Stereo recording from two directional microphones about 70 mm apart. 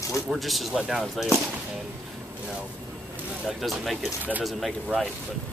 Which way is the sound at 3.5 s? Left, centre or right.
Centre.